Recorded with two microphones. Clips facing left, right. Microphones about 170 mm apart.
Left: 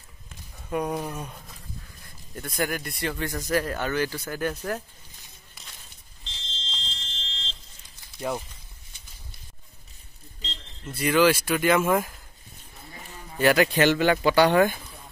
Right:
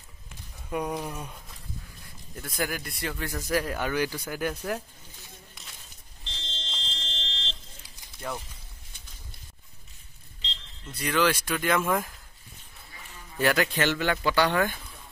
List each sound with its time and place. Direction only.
0.7 s speech: centre (ahead or behind)
5.5 s a sound: centre (ahead or behind)
6.4 s fire alarm: 65° right (ahead or behind)
8.3 s speech: 15° left (ahead or behind)
11.0 s speech: 5° left (ahead or behind)
13.4 s speech: 10° left (ahead or behind)